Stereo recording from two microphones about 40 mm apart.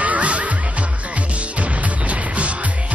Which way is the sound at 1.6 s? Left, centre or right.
Right.